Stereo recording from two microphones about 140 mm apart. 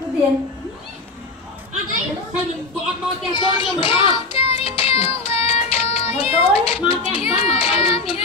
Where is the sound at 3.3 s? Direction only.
35° left (ahead or behind).